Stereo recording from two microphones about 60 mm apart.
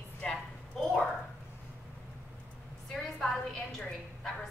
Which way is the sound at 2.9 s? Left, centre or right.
Centre.